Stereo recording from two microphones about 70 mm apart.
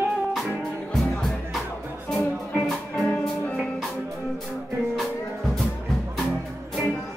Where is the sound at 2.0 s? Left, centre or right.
Centre.